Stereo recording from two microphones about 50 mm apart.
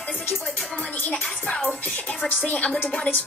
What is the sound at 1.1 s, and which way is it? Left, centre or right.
Music, centre.